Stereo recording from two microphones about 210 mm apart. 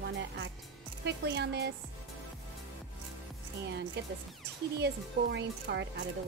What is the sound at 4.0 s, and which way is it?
A woman's voice, 50° right (ahead or behind).